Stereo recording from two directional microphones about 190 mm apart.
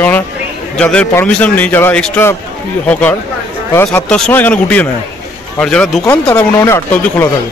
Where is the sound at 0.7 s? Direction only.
5° left (ahead or behind).